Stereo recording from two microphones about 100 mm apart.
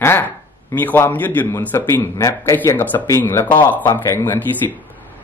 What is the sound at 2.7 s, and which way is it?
A man's voice, 20° left (ahead or behind).